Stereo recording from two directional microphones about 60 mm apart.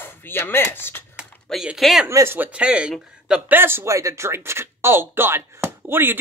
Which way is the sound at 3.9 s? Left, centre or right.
Right.